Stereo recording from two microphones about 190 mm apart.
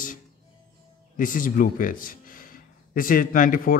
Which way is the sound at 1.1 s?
45° left (ahead or behind).